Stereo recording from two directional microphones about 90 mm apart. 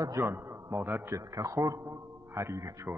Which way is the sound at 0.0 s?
30° right (ahead or behind).